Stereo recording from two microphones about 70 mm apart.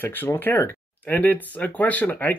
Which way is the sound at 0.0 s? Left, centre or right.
Left.